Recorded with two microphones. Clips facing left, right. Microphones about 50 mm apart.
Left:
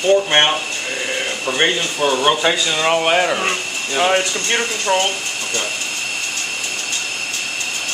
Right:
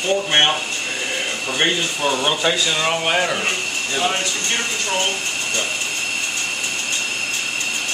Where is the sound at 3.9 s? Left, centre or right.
Left.